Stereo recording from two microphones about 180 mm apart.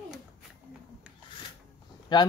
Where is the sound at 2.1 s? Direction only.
25° left (ahead or behind).